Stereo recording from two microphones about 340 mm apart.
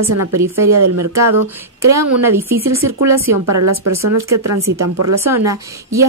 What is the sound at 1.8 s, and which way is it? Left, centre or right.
Speech, centre.